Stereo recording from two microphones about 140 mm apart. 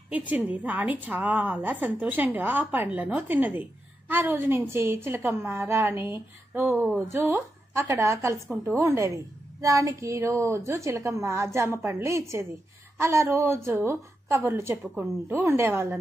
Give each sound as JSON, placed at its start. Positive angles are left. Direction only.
{"t": 0.1, "sound": "a woman's voice", "side_deg": -10}